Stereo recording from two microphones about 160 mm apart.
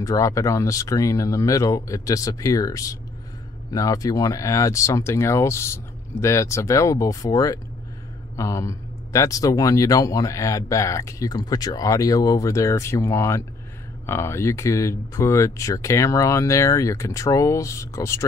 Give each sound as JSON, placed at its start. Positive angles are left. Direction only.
{"t": 0.0, "sound": "speech", "side_deg": 20}